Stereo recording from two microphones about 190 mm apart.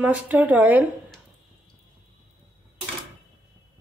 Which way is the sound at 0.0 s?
5° right (ahead or behind).